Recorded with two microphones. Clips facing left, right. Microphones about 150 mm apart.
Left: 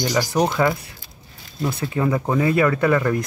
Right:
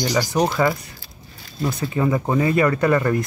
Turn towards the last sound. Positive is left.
turn(degrees=0)  # may be behind; listen again after turning